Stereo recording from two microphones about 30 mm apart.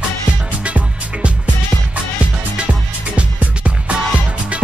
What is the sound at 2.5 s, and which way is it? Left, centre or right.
Music, right.